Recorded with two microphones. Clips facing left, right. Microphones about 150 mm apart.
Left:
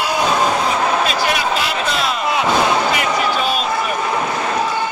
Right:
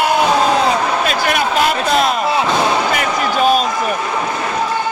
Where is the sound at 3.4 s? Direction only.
45° right (ahead or behind).